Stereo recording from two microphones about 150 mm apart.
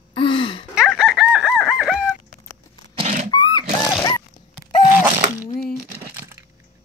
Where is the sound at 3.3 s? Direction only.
25° left (ahead or behind).